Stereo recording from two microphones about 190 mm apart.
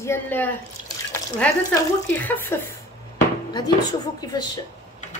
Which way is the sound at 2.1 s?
10° left (ahead or behind).